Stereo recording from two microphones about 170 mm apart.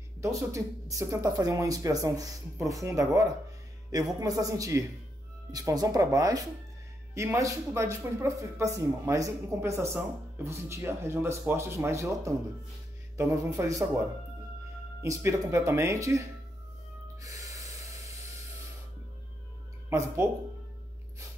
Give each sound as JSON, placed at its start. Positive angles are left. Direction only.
{"t": 0.2, "sound": "speech", "side_deg": -20}
{"t": 17.2, "sound": "snort", "side_deg": -20}